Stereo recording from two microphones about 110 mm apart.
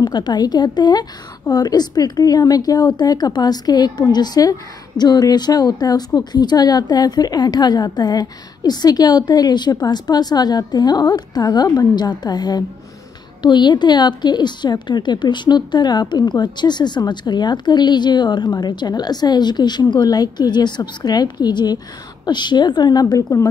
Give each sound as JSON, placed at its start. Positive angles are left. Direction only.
{"t": 0.0, "sound": "a woman's voice", "side_deg": 40}